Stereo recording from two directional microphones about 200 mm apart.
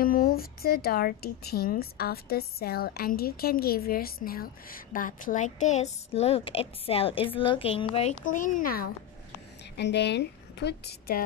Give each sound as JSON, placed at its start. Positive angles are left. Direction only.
{"t": 0.0, "sound": "a woman's voice", "side_deg": 45}
{"t": 9.8, "sound": "a woman's voice", "side_deg": 60}